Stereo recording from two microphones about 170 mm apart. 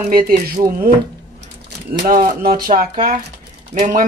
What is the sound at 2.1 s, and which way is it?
Speech, 55° right (ahead or behind).